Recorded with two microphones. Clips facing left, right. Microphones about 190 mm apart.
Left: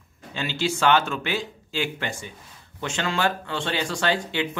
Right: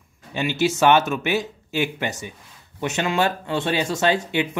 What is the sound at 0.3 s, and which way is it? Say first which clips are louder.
Speech: right 5 dB; 15° right (ahead or behind).